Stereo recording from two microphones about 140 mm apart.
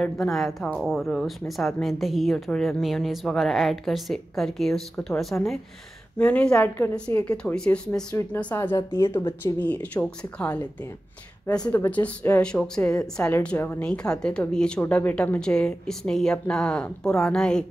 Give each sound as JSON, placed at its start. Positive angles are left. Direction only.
{"t": 0.0, "sound": "a woman's voice", "side_deg": 5}
{"t": 11.7, "sound": "a woman's voice", "side_deg": 10}